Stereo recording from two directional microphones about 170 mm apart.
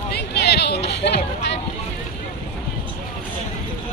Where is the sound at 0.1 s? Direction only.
75° left (ahead or behind).